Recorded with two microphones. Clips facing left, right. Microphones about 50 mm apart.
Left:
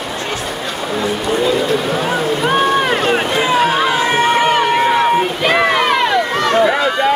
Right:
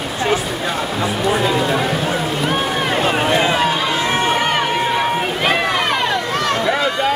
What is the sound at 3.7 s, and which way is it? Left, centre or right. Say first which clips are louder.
Run: left 4 dB; centre.